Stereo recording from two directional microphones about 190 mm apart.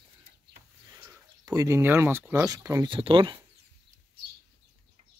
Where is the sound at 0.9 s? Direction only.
15° right (ahead or behind).